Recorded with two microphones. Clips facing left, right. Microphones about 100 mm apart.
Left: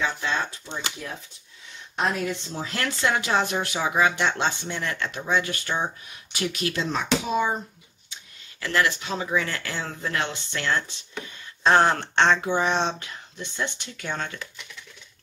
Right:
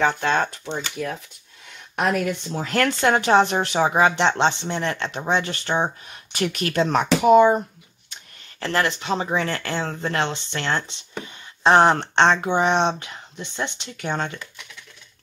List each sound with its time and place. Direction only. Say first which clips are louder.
0.0 s speech: right 6 dB; 60° right (ahead or behind)
3.4 s speech: right 6 dB; 30° right (ahead or behind)
6.0 s speech: right 4 dB; 50° right (ahead or behind)
8.5 s speech: right 1 dB; 35° right (ahead or behind)
9.7 s speech: right 6 dB; 60° right (ahead or behind)
10.0 s speech: right 2 dB; 25° right (ahead or behind)